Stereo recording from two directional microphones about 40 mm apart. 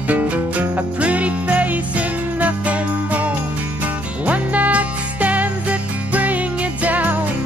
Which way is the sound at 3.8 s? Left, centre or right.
Right.